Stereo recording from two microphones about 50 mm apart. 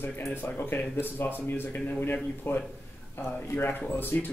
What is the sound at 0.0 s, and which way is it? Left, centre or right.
Speech, left.